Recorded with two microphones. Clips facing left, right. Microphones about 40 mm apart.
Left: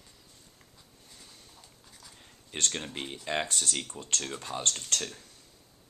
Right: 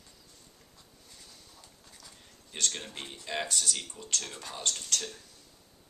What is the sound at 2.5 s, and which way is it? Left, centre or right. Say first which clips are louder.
Speech: left 2 dB; left.